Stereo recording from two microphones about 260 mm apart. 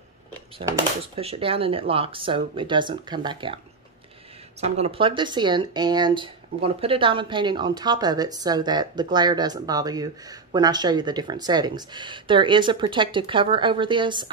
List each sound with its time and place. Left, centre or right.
0.6 s speech: right
4.6 s speech: right